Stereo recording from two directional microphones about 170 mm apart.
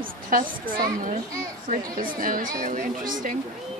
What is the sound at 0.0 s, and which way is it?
A woman's voice, 55° right (ahead or behind).